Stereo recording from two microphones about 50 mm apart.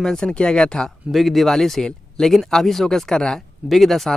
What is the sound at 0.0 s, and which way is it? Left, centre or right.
Speech, centre.